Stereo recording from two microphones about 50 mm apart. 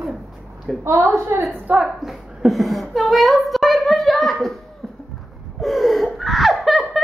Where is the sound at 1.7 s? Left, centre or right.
Right.